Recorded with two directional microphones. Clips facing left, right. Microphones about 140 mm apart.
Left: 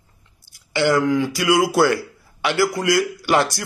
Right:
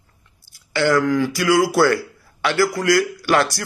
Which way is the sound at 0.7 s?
20° left (ahead or behind).